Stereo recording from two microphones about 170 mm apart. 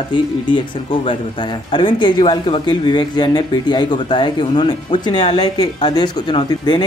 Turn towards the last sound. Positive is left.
turn(degrees=25)  # may be behind; listen again after turning